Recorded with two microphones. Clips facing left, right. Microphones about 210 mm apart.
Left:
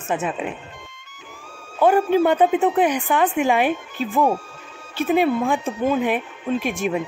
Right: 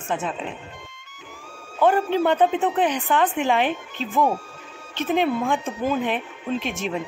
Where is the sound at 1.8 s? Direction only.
10° left (ahead or behind).